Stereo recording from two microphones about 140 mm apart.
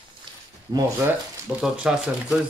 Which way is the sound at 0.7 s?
25° right (ahead or behind).